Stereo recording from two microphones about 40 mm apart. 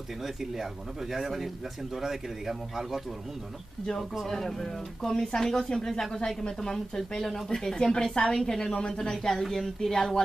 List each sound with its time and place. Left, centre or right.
1.1 s speech: centre
4.3 s speech: centre